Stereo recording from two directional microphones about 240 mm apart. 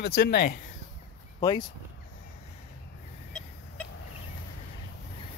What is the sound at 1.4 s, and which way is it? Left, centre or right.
Speech, centre.